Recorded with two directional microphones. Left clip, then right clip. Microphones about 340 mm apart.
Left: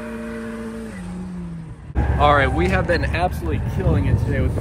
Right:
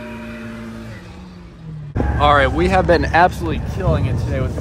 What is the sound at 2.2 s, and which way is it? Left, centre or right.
Speech, centre.